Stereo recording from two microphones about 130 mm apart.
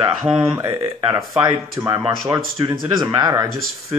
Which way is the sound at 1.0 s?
35° right (ahead or behind).